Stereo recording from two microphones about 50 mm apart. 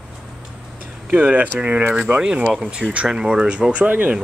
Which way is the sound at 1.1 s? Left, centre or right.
Right.